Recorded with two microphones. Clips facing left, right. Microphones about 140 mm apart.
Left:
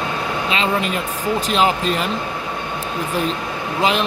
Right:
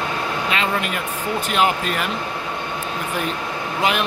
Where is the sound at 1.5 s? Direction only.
30° left (ahead or behind).